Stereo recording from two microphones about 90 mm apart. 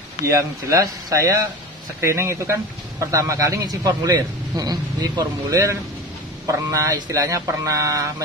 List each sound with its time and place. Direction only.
0.2 s speech: 35° right (ahead or behind)